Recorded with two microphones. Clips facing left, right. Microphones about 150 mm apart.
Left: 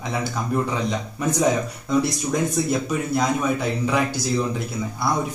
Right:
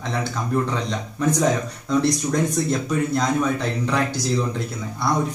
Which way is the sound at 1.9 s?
5° left (ahead or behind).